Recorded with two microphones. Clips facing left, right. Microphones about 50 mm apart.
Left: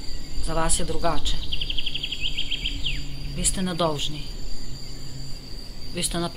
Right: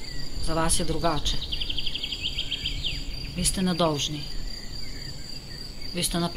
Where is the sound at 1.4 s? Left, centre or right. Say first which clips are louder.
Left 2 dB; left.